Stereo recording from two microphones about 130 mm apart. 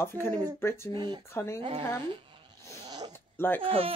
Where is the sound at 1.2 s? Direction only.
20° left (ahead or behind).